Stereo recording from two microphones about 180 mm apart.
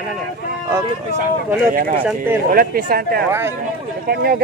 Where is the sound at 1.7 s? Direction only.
50° right (ahead or behind).